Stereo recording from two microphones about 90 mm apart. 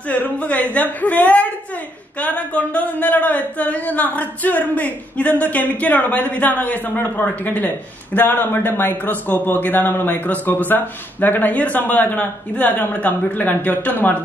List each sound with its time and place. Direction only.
0.1 s a man's voice: 20° left (ahead or behind)